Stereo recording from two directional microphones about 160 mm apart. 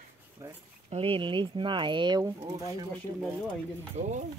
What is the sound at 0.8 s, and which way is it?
Speech, 35° right (ahead or behind).